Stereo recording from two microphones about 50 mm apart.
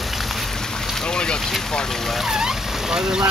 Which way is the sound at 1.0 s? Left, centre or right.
Centre.